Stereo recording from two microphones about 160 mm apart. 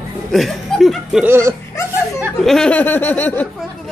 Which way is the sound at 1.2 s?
15° right (ahead or behind).